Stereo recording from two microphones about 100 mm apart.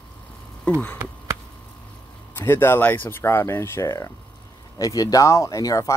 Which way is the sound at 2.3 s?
20° left (ahead or behind).